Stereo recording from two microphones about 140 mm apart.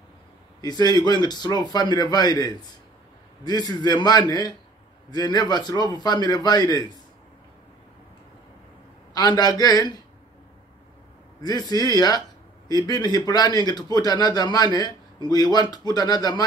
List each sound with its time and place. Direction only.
0.6 s a man's voice: 30° left (ahead or behind)
9.1 s a man's voice: 30° left (ahead or behind)
11.4 s a man's voice: 30° left (ahead or behind)